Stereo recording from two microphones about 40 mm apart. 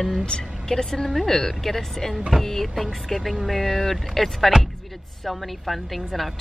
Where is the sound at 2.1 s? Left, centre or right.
Centre.